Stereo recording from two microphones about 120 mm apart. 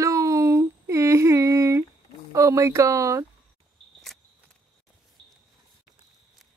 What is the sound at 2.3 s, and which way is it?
Speech, 25° right (ahead or behind).